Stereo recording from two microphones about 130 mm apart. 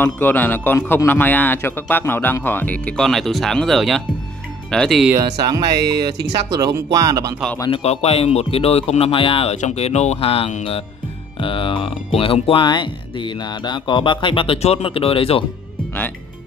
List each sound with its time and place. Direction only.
0.0 s a man's voice: 15° left (ahead or behind)
5.1 s speech: 30° right (ahead or behind)
7.7 s speech: 55° left (ahead or behind)
9.6 s speech: 60° left (ahead or behind)